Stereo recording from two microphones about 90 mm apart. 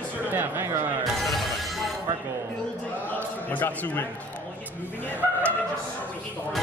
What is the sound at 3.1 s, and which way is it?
Speech, 20° left (ahead or behind).